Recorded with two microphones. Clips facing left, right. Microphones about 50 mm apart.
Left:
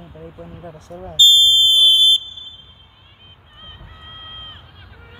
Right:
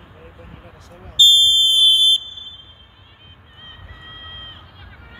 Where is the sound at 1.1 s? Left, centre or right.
Centre.